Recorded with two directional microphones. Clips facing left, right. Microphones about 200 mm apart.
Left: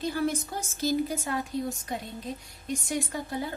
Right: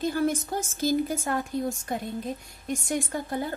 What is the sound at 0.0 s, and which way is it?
A woman's voice, 45° right (ahead or behind).